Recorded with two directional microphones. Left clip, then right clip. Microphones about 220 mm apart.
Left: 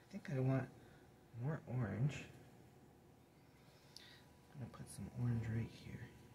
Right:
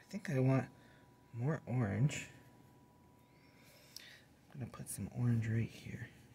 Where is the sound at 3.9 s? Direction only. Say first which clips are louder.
Right 5 dB; 50° right (ahead or behind).